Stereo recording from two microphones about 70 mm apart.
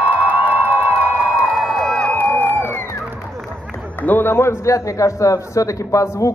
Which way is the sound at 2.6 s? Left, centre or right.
Left.